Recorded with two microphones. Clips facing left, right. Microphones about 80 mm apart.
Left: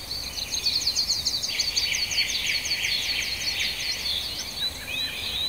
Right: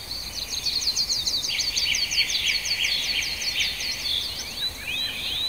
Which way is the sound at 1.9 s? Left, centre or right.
Left.